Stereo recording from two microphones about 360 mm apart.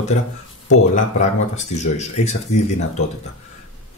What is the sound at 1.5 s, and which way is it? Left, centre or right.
Speech, centre.